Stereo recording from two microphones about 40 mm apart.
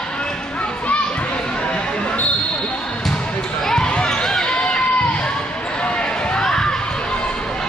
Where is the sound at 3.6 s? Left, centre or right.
Centre.